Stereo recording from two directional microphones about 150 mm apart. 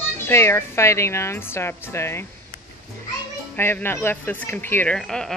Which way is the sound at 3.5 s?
15° left (ahead or behind).